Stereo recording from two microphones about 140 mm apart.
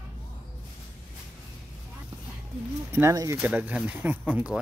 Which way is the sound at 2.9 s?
20° right (ahead or behind).